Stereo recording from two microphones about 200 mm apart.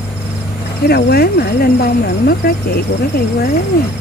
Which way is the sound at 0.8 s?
55° left (ahead or behind).